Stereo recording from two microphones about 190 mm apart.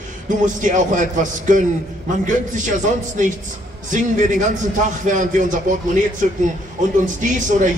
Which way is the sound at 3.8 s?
40° right (ahead or behind).